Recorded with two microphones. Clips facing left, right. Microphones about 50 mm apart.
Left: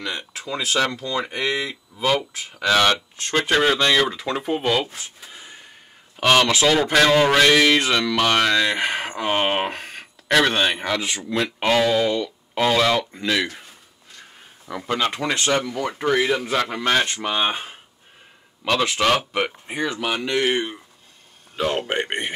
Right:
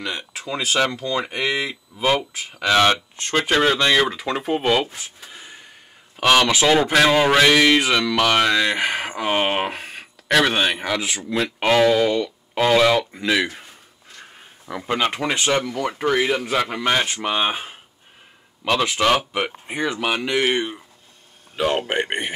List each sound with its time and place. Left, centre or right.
0.0 s speech: centre
5.2 s a sound: centre
6.1 s speech: centre
21.5 s speech: right
21.8 s speech: centre